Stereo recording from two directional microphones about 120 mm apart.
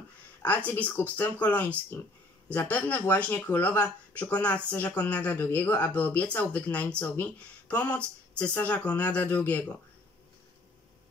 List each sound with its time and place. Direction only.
0.7 s speech: 15° left (ahead or behind)